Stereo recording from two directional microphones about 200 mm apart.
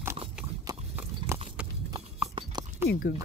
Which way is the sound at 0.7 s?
15° right (ahead or behind).